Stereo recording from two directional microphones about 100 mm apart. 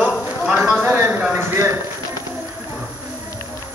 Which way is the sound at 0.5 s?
15° right (ahead or behind).